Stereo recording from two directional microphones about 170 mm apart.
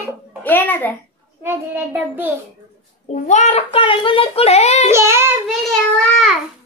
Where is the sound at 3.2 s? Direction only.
40° left (ahead or behind).